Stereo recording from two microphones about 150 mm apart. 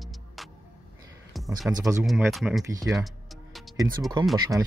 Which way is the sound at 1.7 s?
20° right (ahead or behind).